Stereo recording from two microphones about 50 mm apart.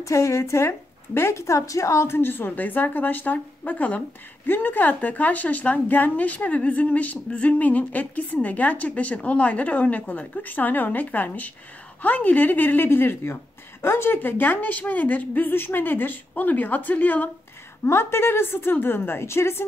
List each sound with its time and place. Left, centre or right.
0.0 s a woman's voice: left
2.0 s a woman's voice: left
17.8 s a woman's voice: left